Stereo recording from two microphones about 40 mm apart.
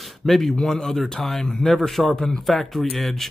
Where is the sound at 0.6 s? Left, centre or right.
Centre.